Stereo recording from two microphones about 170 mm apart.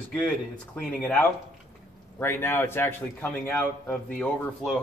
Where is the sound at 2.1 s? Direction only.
15° left (ahead or behind).